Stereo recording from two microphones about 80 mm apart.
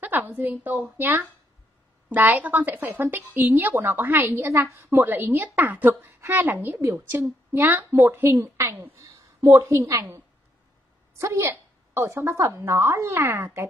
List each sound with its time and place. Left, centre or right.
0.0 s speech: right
4.5 s a woman's voice: right
5.0 s a woman's voice: right